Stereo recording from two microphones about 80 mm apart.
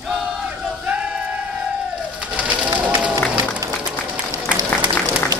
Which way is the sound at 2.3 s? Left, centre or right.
Centre.